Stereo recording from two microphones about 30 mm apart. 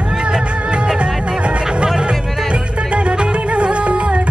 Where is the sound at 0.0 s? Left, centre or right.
Right.